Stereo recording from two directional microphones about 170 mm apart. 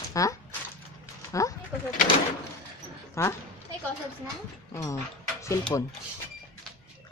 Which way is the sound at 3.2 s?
15° left (ahead or behind).